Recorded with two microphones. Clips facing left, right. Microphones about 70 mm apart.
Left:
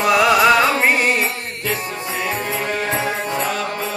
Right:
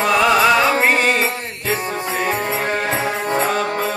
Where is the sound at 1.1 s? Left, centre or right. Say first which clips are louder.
Right 1 dB; right.